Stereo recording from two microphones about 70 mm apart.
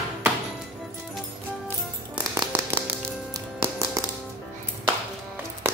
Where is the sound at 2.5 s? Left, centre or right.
Right.